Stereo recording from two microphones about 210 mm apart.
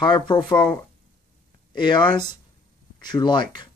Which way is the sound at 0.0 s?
20° left (ahead or behind).